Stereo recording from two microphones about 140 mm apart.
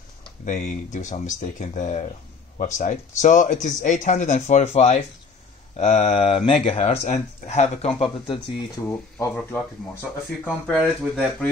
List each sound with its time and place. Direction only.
0.5 s speech: 65° left (ahead or behind); by 6.7 s 45° left (ahead or behind)
6.7 s speech: 55° left (ahead or behind)
8.8 s speech: 15° left (ahead or behind)
10.8 s speech: 5° right (ahead or behind)